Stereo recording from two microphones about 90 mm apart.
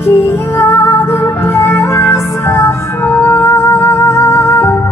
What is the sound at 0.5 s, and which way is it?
Music, 30° left (ahead or behind).